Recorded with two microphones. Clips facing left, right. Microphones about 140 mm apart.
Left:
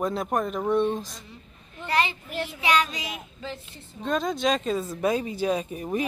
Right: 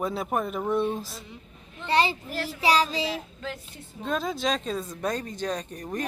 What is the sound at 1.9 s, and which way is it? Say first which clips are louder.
A child's voice: right 2 dB; 35° right (ahead or behind).